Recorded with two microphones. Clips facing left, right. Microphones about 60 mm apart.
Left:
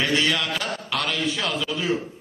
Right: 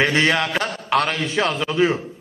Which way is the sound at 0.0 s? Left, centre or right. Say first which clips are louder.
Right 5 dB; right.